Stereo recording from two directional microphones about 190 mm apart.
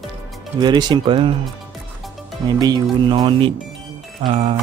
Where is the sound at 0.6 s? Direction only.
25° right (ahead or behind).